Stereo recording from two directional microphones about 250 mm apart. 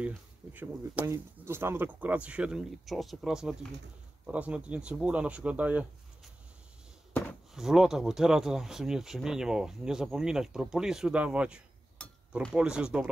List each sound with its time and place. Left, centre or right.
0.0 s speech: centre
7.5 s speech: centre